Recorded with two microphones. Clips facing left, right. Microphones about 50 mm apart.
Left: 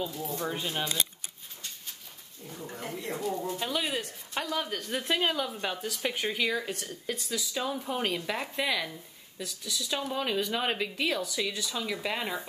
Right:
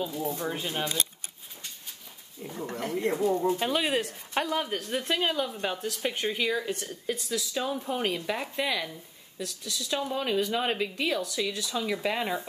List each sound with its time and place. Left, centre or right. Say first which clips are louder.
0.4 s speech: right 1 dB; centre
2.6 s speech: right 6 dB; right
3.1 s speech: right 7 dB; right
4.7 s speech: right 1 dB; centre